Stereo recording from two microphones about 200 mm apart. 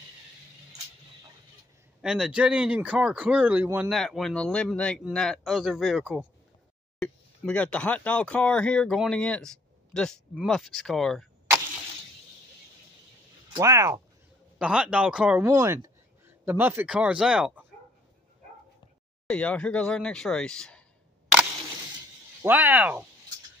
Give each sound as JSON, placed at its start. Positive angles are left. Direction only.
{"t": 2.0, "sound": "speech", "side_deg": -5}
{"t": 3.9, "sound": "speech", "side_deg": 0}
{"t": 13.6, "sound": "speech", "side_deg": -15}
{"t": 14.6, "sound": "speech", "side_deg": -5}
{"t": 19.2, "sound": "speech", "side_deg": 5}
{"t": 22.4, "sound": "speech", "side_deg": -10}